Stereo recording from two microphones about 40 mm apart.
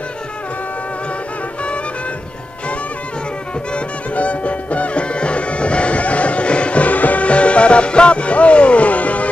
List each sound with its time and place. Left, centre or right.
3.7 s music: left